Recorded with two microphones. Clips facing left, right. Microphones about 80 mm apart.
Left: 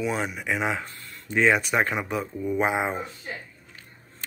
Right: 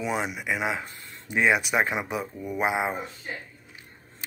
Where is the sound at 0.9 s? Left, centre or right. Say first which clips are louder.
Left 2 dB; right.